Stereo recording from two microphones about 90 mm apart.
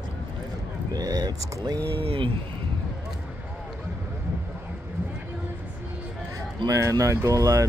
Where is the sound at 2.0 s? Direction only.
90° right.